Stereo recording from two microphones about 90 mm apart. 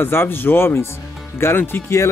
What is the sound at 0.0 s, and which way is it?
Speech, 25° left (ahead or behind).